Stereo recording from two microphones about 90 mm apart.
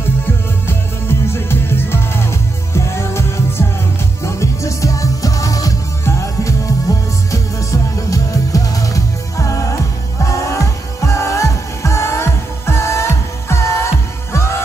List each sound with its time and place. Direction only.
0.7 s music: 25° left (ahead or behind)